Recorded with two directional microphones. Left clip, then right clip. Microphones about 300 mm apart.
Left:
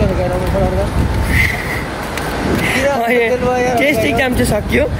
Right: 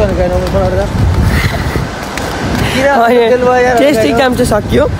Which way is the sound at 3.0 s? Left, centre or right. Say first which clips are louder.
Right 6 dB; centre.